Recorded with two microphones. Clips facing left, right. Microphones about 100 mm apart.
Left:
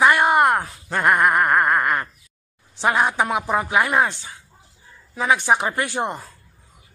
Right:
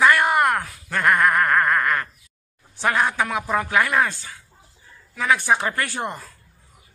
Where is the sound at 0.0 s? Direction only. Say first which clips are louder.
Left 2 dB; 20° left (ahead or behind).